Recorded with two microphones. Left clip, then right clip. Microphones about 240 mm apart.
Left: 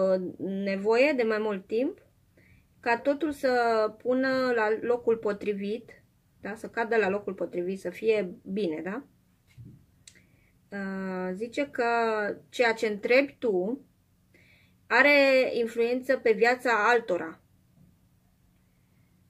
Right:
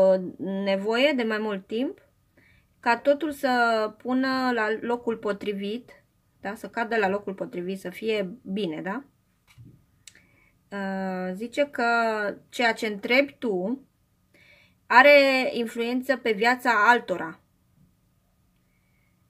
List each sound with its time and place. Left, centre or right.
0.7 s speech: right
10.7 s speech: right